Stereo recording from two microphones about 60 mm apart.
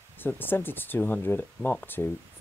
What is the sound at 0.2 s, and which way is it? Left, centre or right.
Speech, left.